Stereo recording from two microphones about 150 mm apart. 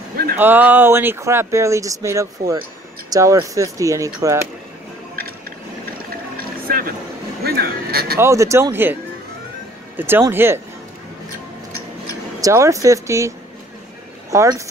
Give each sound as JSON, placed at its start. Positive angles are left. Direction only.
{"t": 0.4, "sound": "speech", "side_deg": -10}
{"t": 6.3, "sound": "vehicle", "side_deg": -75}
{"t": 7.4, "sound": "a sound", "side_deg": -90}
{"t": 8.2, "sound": "speech", "side_deg": -20}
{"t": 9.9, "sound": "speech", "side_deg": -15}
{"t": 12.4, "sound": "speech", "side_deg": -20}
{"t": 14.3, "sound": "speech", "side_deg": -20}